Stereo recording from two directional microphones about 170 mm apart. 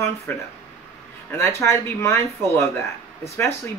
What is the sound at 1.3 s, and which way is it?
Speech, 15° left (ahead or behind).